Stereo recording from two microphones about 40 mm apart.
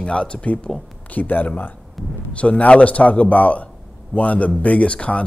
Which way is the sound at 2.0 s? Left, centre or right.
Centre.